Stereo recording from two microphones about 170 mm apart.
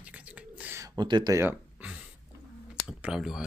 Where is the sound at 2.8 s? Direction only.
5° right (ahead or behind).